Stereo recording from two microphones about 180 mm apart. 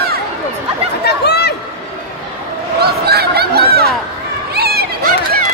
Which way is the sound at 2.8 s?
60° right (ahead or behind).